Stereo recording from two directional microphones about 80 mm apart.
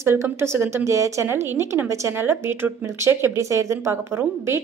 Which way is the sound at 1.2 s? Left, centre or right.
Right.